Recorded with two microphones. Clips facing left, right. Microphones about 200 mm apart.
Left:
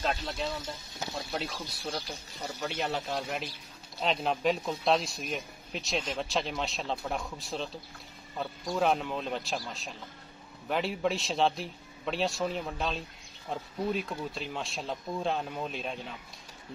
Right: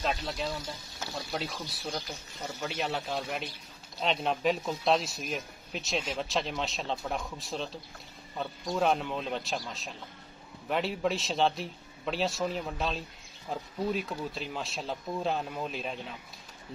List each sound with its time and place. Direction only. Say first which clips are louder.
0.0 s a man's voice: even; centre (ahead or behind)